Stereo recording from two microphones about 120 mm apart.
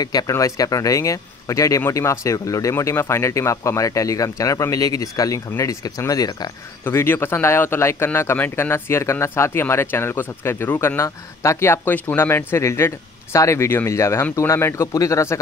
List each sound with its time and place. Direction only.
0.0 s speech: 30° left (ahead or behind)
6.8 s speech: 20° left (ahead or behind)